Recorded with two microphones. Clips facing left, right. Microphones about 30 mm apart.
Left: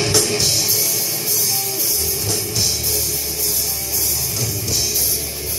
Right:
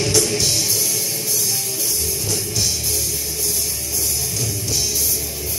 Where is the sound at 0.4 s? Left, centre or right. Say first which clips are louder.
Left 1 dB; centre.